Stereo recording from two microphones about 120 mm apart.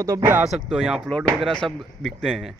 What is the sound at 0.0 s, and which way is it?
Speech, 25° right (ahead or behind).